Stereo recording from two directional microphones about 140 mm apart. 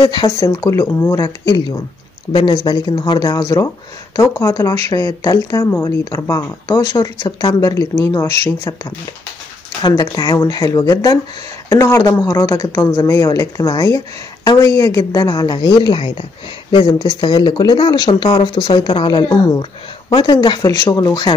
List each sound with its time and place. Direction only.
0.0 s speech: 30° left (ahead or behind)
9.8 s speech: 30° left (ahead or behind)